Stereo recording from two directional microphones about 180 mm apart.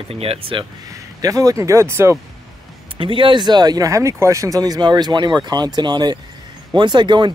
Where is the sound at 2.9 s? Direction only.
30° right (ahead or behind).